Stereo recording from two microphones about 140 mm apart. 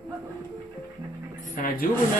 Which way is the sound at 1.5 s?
90° left.